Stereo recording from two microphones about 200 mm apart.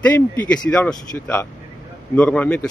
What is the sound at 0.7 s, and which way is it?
Speech, 5° left (ahead or behind).